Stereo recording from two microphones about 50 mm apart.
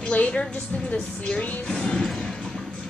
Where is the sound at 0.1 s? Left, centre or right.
Left.